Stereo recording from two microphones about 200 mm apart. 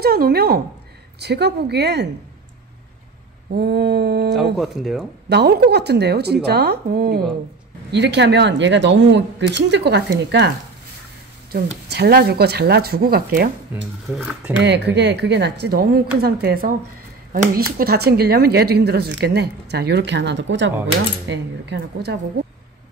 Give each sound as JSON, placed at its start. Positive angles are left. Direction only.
{"t": 0.0, "sound": "speech", "side_deg": -50}
{"t": 3.5, "sound": "speech", "side_deg": -55}
{"t": 4.6, "sound": "speech", "side_deg": 0}
{"t": 5.3, "sound": "speech", "side_deg": -55}
{"t": 7.9, "sound": "speech", "side_deg": -60}
{"t": 11.9, "sound": "speech", "side_deg": -55}
{"t": 14.1, "sound": "speech", "side_deg": -5}
{"t": 14.6, "sound": "speech", "side_deg": -60}